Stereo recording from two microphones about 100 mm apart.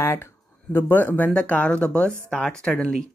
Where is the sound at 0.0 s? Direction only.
25° left (ahead or behind).